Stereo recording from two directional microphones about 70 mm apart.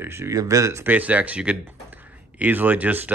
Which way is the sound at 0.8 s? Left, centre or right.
Right.